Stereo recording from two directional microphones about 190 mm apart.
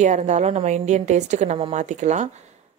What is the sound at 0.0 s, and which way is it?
Speech, 40° right (ahead or behind).